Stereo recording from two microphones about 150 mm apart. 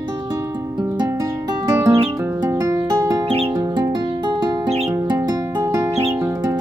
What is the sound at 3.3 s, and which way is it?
Music, 40° right (ahead or behind).